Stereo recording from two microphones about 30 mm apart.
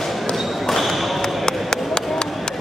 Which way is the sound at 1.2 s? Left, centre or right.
Left.